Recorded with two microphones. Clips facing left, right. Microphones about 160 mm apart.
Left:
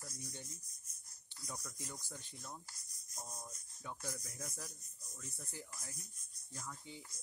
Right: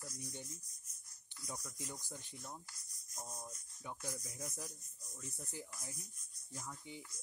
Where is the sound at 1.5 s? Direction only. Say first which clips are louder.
Right 1 dB; 15° right (ahead or behind).